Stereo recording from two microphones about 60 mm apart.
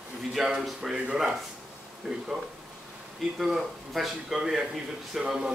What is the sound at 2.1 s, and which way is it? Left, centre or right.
Speech, centre.